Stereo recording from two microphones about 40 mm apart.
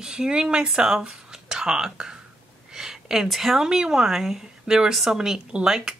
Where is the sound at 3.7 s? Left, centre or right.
Centre.